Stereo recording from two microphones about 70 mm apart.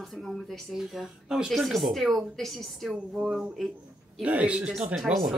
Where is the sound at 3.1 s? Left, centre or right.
Centre.